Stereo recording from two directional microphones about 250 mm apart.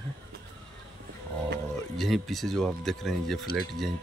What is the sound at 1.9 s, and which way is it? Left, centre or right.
Speech, centre.